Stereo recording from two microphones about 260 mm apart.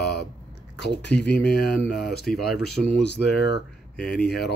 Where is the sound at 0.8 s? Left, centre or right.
Left.